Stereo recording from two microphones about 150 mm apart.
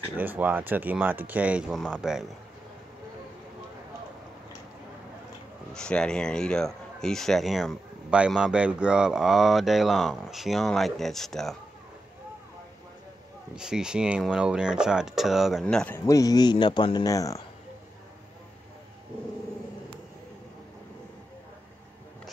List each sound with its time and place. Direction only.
0.2 s speech: 10° right (ahead or behind)
5.8 s speech: 5° left (ahead or behind)
13.6 s speech: 5° right (ahead or behind)
16.1 s speech: 25° left (ahead or behind)